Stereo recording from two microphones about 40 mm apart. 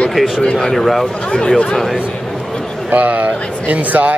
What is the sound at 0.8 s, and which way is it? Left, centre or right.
Speech, centre.